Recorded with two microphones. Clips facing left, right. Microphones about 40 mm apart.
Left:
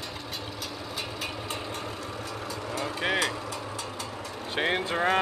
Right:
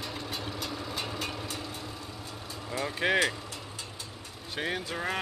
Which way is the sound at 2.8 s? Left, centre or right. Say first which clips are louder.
Right 1 dB; centre.